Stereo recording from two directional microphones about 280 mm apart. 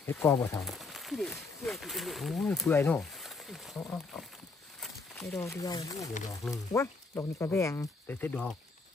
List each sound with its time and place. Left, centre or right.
0.0 s speech: centre